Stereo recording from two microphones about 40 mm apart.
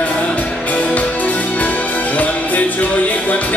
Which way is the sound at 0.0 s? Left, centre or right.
Left.